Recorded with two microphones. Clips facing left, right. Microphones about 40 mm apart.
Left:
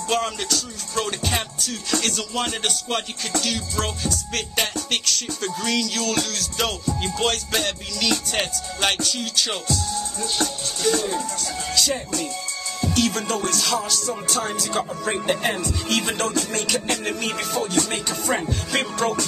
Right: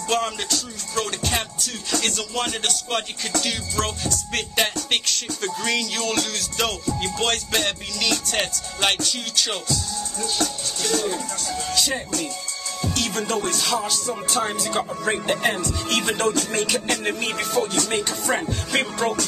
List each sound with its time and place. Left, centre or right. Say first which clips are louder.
0.1 s music: even; centre
10.8 s music: left 2 dB; centre